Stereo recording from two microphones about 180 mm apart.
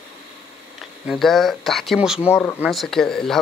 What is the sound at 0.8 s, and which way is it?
Speech, centre (ahead or behind).